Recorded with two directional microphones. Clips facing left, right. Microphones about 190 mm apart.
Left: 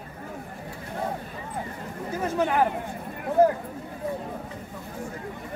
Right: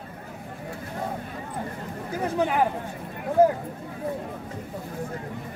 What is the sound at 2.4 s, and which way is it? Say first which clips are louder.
Speech: even; 15° right (ahead or behind).